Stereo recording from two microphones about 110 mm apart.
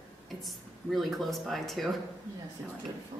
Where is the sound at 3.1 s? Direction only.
90° right.